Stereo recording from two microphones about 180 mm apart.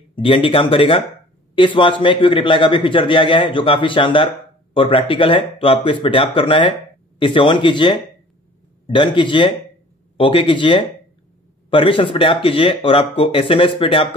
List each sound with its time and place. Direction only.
0.1 s a man's voice: 30° left (ahead or behind)